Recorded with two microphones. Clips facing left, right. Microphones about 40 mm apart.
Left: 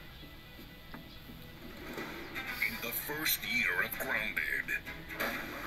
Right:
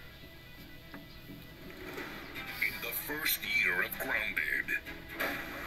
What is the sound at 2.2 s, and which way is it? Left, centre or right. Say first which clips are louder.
Music: left 2 dB; left.